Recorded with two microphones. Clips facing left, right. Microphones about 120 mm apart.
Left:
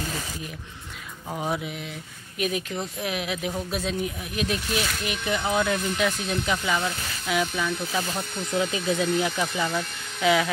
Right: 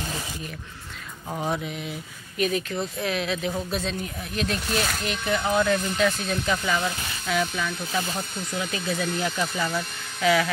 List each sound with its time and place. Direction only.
1.3 s mantra: 5° left (ahead or behind)
2.3 s speech: 10° left (ahead or behind)